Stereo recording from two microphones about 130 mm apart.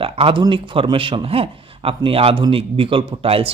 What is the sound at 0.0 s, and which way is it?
Speech, 45° right (ahead or behind).